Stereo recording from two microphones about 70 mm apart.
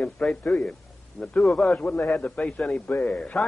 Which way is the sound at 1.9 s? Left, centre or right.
Left.